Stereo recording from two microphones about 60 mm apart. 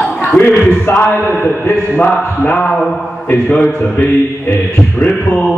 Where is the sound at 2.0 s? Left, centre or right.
Left.